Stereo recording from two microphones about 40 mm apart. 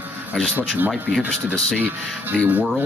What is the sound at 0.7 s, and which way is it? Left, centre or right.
Speech, right.